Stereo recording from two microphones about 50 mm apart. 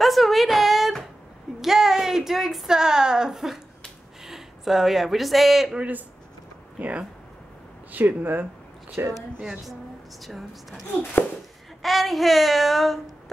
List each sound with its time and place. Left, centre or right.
0.0 s a sound: centre
1.6 s speech: centre
5.8 s speech: right
8.2 s speech: right
9.0 s speech: right
9.4 s speech: centre
10.2 s a sound: centre